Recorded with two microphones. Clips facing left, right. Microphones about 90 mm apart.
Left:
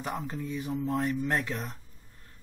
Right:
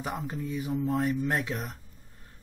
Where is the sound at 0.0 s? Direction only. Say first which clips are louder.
Right 1 dB; 5° right (ahead or behind).